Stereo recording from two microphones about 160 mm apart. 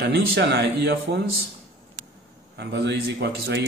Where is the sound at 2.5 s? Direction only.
90° right.